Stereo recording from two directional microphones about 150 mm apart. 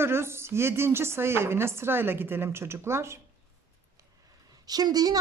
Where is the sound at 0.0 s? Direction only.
15° right (ahead or behind).